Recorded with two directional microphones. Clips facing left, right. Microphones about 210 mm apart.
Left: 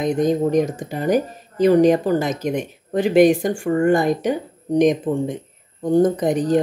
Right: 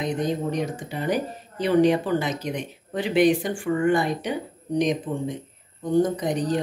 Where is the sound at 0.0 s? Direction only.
45° left (ahead or behind).